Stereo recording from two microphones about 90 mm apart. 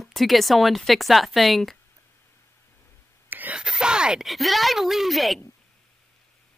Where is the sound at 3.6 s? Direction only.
10° right (ahead or behind).